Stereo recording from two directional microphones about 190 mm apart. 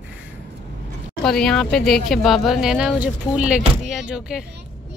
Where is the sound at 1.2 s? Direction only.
Centre (ahead or behind).